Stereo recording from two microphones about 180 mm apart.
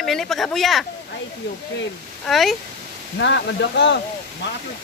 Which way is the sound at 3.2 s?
80° left.